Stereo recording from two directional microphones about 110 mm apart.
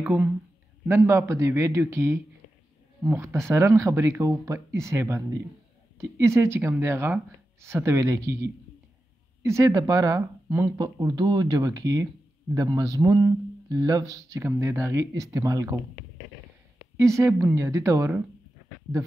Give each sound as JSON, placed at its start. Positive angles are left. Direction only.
{"t": 0.0, "sound": "speech", "side_deg": -15}
{"t": 0.8, "sound": "a man's voice", "side_deg": -25}
{"t": 16.9, "sound": "speech", "side_deg": -25}